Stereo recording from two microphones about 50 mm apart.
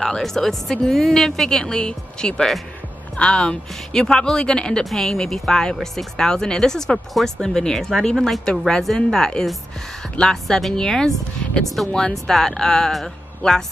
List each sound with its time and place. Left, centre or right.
0.0 s speech: centre